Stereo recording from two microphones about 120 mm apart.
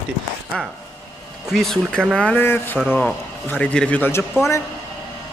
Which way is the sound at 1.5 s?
Centre (ahead or behind).